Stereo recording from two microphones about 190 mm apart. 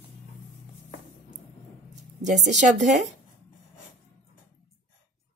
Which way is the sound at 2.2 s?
40° right (ahead or behind).